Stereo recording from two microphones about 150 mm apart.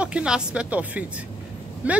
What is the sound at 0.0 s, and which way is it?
Speech, 5° right (ahead or behind).